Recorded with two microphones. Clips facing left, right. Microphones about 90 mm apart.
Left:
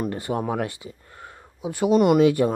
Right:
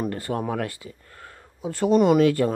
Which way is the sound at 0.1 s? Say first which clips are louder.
Left 1 dB; 20° left (ahead or behind).